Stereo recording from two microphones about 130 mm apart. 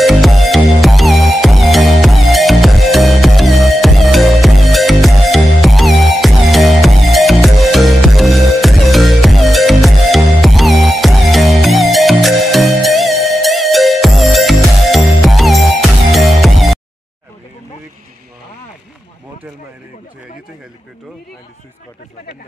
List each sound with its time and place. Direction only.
0.0 s music: centre (ahead or behind)